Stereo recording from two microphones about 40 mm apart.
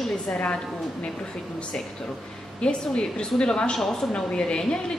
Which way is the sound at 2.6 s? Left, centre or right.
Left.